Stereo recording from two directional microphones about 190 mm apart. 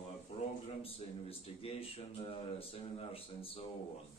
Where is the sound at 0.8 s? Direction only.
30° left (ahead or behind).